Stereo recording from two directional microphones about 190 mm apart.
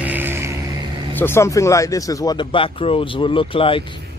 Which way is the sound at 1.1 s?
10° left (ahead or behind).